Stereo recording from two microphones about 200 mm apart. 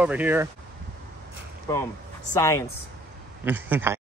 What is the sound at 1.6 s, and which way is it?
Speech, 15° left (ahead or behind).